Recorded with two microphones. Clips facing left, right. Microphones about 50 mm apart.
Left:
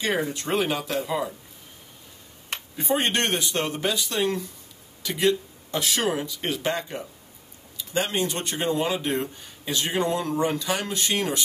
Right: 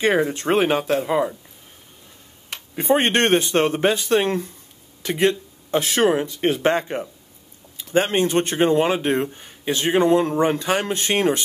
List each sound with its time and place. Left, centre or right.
0.0 s speech: right
2.7 s speech: right